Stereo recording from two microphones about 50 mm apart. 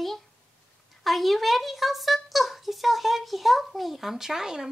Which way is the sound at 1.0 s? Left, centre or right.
Centre.